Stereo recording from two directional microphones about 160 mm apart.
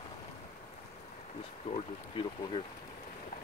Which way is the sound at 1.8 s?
35° left (ahead or behind).